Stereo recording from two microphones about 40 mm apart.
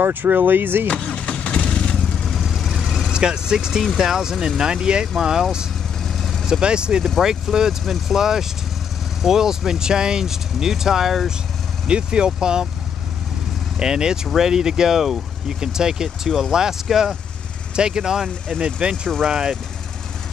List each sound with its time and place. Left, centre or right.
0.0 s speech: right
0.8 s vehicle: left
2.0 s vehicle: centre
2.7 s vehicle: centre
3.1 s speech: centre
6.1 s vehicle: centre
6.6 s speech: right
7.8 s speech: centre
8.2 s speech: centre
11.9 s speech: right
13.7 s speech: centre
17.7 s speech: centre